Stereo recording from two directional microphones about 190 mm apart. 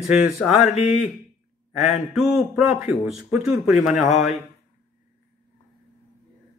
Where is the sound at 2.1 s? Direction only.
Centre (ahead or behind).